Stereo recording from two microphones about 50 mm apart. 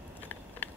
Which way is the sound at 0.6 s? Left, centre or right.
Left.